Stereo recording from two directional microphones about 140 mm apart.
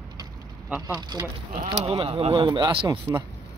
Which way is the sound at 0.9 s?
30° right (ahead or behind).